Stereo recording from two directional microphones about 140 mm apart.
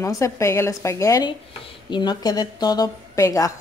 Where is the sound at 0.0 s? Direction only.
20° left (ahead or behind).